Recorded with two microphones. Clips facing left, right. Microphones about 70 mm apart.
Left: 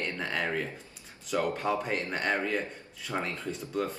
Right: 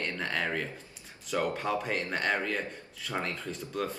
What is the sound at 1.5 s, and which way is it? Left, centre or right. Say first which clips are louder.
A man's voice: left 1 dB; centre.